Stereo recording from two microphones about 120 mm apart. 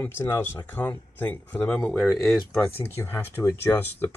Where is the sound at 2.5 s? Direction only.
15° left (ahead or behind).